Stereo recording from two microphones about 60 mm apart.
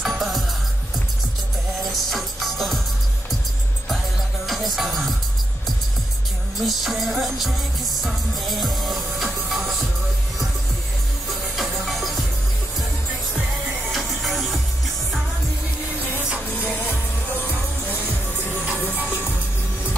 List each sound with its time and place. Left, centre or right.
0.0 s music: centre
1.9 s music: centre
4.5 s music: centre
6.6 s music: centre
11.5 s music: centre
13.9 s music: centre
16.3 s music: right